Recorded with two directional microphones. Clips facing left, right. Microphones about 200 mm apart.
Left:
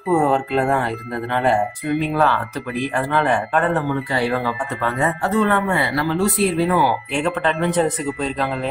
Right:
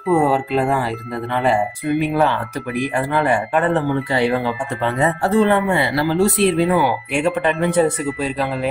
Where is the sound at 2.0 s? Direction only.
15° right (ahead or behind).